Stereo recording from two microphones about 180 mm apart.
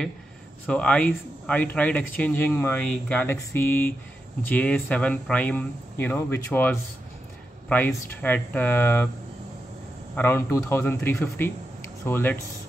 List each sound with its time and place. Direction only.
0.7 s speech: 5° left (ahead or behind)
10.1 s speech: 10° left (ahead or behind)